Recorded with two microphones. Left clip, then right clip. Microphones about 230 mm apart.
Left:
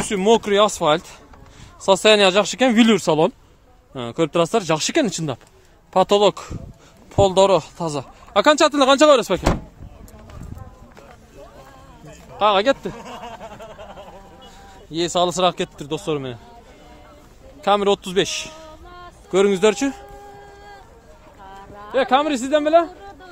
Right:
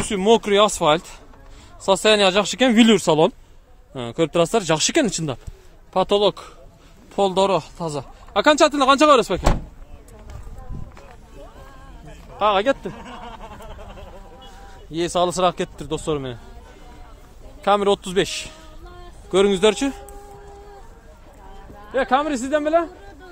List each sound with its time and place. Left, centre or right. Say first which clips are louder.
0.0 s speech: even; centre
1.9 s speech: left 2 dB; centre
5.9 s speech: left 3 dB; centre
12.4 s speech: left 2 dB; centre
12.9 s a sound: left 2 dB; left
14.9 s speech: left 1 dB; centre
17.6 s speech: even; centre
21.9 s a man's voice: left 2 dB; centre